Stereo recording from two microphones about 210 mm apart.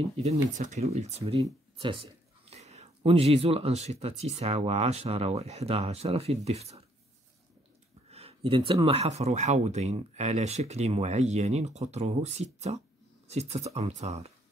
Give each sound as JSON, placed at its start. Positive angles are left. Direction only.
{"t": 0.2, "sound": "speech", "side_deg": -35}
{"t": 8.1, "sound": "speech", "side_deg": -30}